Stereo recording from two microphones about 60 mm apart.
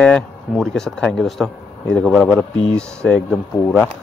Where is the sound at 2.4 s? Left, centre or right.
Centre.